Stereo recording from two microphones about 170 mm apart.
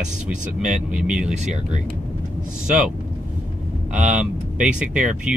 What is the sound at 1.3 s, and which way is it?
Speech, 40° right (ahead or behind).